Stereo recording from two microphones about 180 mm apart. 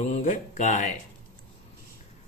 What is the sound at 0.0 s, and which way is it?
Speech, 40° left (ahead or behind).